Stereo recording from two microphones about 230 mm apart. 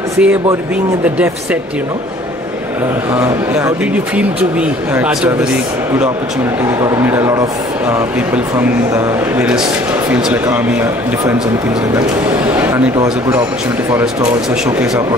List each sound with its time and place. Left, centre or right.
0.2 s speech: centre
3.2 s speech: centre
6.6 s speech: centre
8.5 s speech: centre
12.4 s speech: centre